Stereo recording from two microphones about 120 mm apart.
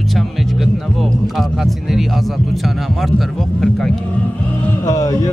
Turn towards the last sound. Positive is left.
turn(degrees=30)  # may be behind; listen again after turning